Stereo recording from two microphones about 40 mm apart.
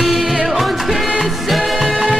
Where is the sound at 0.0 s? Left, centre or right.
Centre.